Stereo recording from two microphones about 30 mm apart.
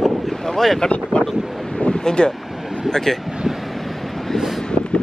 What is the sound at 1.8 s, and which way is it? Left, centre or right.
Vehicle, left.